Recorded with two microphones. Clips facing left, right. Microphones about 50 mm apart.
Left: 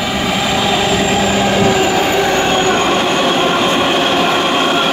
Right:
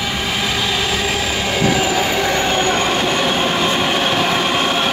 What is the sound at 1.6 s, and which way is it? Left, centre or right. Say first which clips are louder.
Train: left 4 dB; left.